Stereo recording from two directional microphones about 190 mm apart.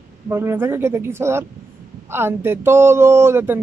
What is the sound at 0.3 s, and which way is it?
Speech, 10° right (ahead or behind).